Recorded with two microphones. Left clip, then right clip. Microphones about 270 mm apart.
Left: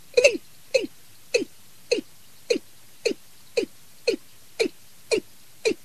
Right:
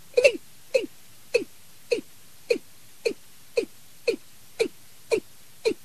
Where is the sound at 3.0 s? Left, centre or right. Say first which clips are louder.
Left 2 dB; centre.